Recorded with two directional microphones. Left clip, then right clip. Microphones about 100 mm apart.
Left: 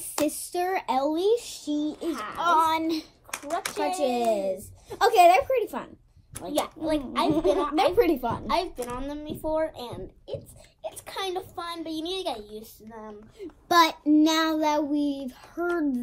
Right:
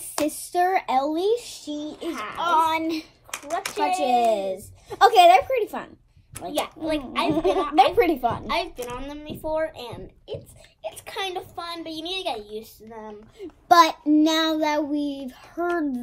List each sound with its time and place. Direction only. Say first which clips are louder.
0.2 s speech: right 5 dB; 20° right (ahead or behind)
1.4 s speech: right 1 dB; centre (ahead or behind)
1.7 s a woman's voice: left 2 dB; 15° left (ahead or behind)
4.0 s a child's voice: right 6 dB; 35° right (ahead or behind)
4.5 s child singing: right 1 dB; 25° right (ahead or behind)
6.5 s a woman's voice: right 1 dB; 10° left (ahead or behind)
7.7 s a child's voice: right 7 dB; 30° right (ahead or behind)
8.4 s a woman's voice: even; 10° left (ahead or behind)
13.4 s a child's voice: right 5 dB; 40° right (ahead or behind)
14.1 s child singing: right 2 dB; 25° right (ahead or behind)